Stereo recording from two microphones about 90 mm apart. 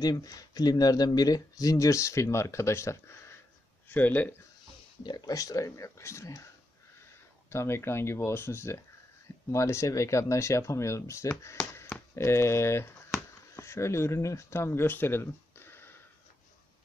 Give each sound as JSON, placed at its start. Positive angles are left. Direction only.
{"t": 0.0, "sound": "speech", "side_deg": 45}
{"t": 3.9, "sound": "speech", "side_deg": 20}
{"t": 5.0, "sound": "speech", "side_deg": 45}
{"t": 7.5, "sound": "speech", "side_deg": 30}
{"t": 11.4, "sound": "a sound", "side_deg": 30}
{"t": 12.2, "sound": "speech", "side_deg": 30}